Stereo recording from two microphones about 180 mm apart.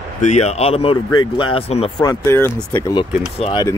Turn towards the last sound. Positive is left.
turn(degrees=30)  # may be behind; listen again after turning